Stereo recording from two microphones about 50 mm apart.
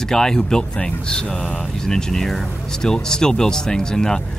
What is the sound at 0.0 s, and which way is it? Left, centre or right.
Speech, centre.